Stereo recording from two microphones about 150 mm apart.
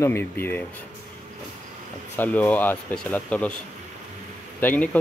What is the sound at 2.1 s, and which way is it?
Speech, 10° left (ahead or behind).